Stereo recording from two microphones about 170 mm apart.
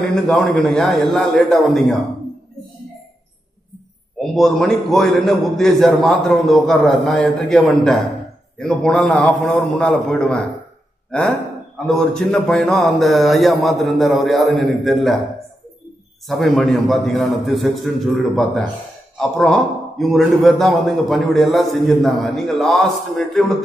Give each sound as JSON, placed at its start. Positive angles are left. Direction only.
{"t": 0.1, "sound": "a man's voice", "side_deg": 0}
{"t": 4.2, "sound": "a man's voice", "side_deg": 0}
{"t": 16.3, "sound": "a man's voice", "side_deg": 0}